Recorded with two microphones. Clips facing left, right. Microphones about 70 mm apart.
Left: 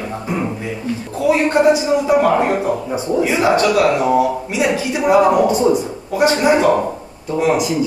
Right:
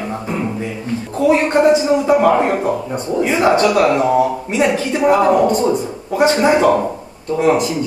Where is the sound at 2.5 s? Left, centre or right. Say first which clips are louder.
Even; centre.